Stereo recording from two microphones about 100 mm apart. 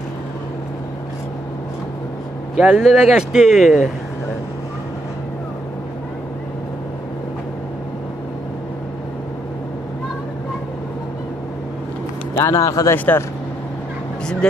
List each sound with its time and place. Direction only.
2.5 s speech: 5° right (ahead or behind)
12.4 s speech: 30° left (ahead or behind)
12.9 s speech: 20° left (ahead or behind)
14.4 s speech: 10° left (ahead or behind)